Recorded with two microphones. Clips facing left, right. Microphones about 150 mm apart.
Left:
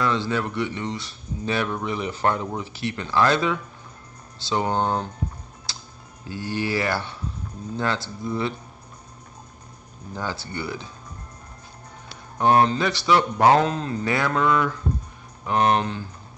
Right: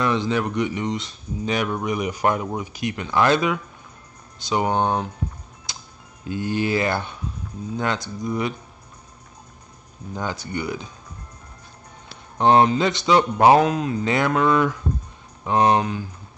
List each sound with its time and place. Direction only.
0.0 s speech: 20° right (ahead or behind)
5.7 s music: 20° right (ahead or behind)
6.2 s speech: 20° right (ahead or behind)
10.1 s speech: 15° right (ahead or behind)
12.4 s speech: 20° right (ahead or behind)